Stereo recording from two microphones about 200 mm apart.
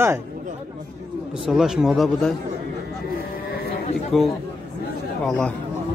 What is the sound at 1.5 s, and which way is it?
Speech, centre (ahead or behind).